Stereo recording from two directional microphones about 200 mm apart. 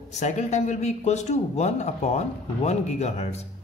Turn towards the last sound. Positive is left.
turn(degrees=30)  # may be behind; listen again after turning